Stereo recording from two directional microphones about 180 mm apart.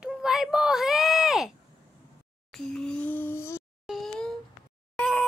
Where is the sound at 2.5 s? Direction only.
5° left (ahead or behind).